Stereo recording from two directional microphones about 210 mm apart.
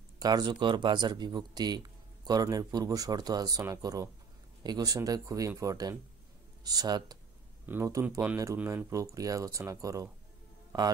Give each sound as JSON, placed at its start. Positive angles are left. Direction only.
{"t": 0.2, "sound": "speech", "side_deg": -20}